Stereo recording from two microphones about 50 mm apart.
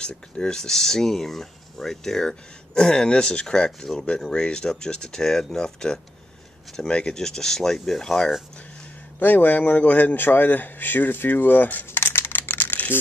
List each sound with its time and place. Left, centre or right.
0.0 s speech: centre
9.2 s speech: left